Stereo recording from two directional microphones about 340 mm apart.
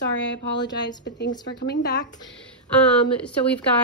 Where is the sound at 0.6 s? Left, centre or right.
Centre.